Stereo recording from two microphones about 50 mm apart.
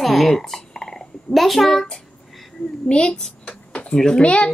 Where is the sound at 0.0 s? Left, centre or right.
Centre.